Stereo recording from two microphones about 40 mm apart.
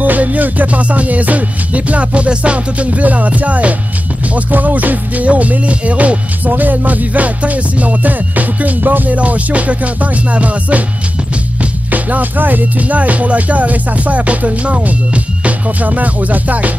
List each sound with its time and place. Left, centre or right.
0.0 s music: right
11.9 s music: right